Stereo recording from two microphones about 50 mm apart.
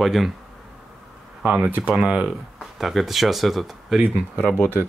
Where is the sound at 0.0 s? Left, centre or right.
Centre.